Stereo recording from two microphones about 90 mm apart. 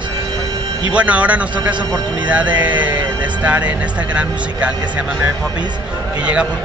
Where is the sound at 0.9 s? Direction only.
15° right (ahead or behind).